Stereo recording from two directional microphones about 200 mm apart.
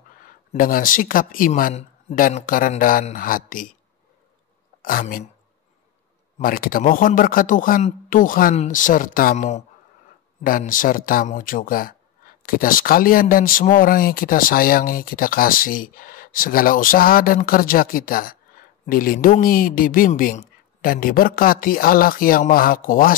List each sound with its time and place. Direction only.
0.5 s speech: 45° left (ahead or behind)
4.8 s speech: 45° left (ahead or behind)
6.3 s speech: 45° left (ahead or behind)